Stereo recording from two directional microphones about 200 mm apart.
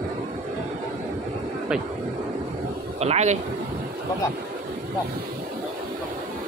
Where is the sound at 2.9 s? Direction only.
35° right (ahead or behind).